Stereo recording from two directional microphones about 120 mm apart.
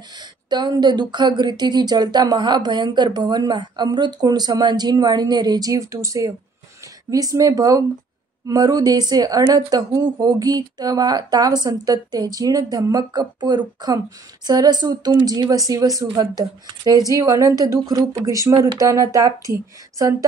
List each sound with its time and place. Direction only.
0.5 s speech: 35° right (ahead or behind)